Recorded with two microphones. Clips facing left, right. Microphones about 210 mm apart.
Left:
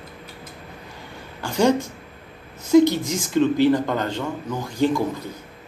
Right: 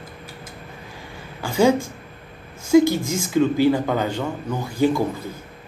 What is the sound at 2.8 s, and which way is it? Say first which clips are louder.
Speech: right 1 dB; 55° right (ahead or behind).